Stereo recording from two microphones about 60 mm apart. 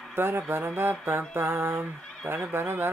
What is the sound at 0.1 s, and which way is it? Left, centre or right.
Speech, right.